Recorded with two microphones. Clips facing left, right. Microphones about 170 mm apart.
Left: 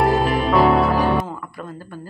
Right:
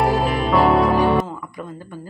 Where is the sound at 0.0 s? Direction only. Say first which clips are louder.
Left 1 dB; centre (ahead or behind).